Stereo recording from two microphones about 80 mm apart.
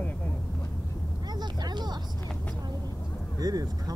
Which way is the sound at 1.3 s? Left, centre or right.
Right.